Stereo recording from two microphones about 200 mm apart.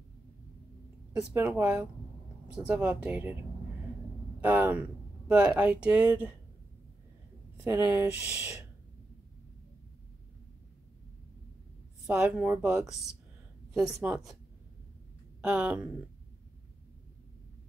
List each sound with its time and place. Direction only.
1.1 s speech: 10° right (ahead or behind)
4.4 s speech: 10° right (ahead or behind)
7.6 s speech: 10° right (ahead or behind)
12.1 s speech: 5° right (ahead or behind)
14.0 s speech: 5° right (ahead or behind)
15.4 s speech: 5° right (ahead or behind)